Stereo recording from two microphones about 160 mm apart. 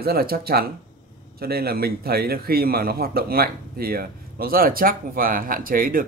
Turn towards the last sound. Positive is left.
turn(degrees=-65)  # may be behind; listen again after turning